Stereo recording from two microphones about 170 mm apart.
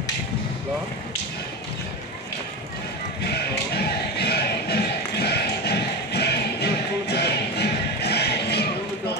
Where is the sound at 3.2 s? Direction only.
70° left (ahead or behind).